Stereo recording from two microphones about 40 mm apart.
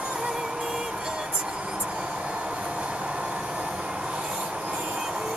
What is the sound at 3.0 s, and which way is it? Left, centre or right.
Vehicle, right.